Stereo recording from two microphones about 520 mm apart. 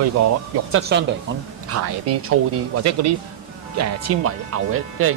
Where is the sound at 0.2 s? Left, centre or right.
Right.